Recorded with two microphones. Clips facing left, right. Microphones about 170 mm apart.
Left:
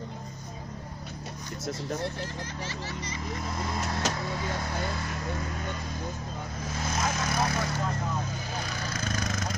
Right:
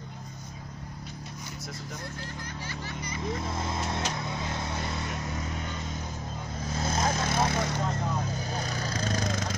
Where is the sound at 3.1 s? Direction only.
25° right (ahead or behind).